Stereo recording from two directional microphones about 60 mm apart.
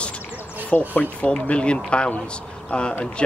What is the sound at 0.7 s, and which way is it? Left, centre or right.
Speech, left.